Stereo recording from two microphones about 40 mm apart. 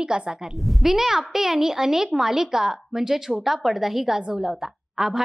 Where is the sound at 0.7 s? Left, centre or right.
Centre.